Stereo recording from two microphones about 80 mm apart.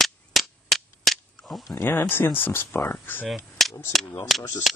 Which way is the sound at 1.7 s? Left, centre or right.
Left.